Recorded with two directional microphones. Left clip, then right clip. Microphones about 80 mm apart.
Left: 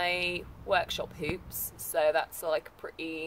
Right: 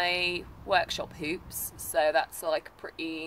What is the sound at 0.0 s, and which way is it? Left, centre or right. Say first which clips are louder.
Speech: right 2 dB; right.